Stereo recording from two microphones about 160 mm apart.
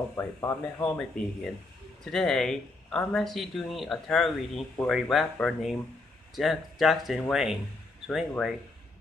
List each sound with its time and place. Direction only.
0.1 s speech: 20° left (ahead or behind)
0.8 s speech: 5° left (ahead or behind)